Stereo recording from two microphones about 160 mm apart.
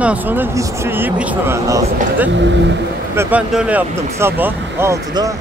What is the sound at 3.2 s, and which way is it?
Speech, 10° right (ahead or behind).